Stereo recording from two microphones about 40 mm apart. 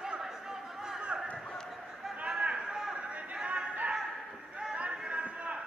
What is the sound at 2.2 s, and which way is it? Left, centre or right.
Chatter, right.